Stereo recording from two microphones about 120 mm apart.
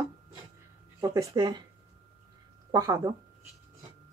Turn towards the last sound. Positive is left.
turn(degrees=-30)  # may be behind; listen again after turning